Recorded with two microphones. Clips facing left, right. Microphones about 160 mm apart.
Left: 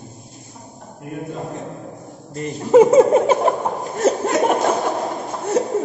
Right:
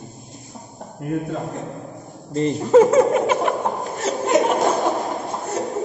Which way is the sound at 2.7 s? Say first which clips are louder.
Left 3 dB; 20° left (ahead or behind).